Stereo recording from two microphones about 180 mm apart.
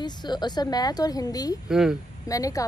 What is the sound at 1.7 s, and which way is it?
Speech, 5° right (ahead or behind).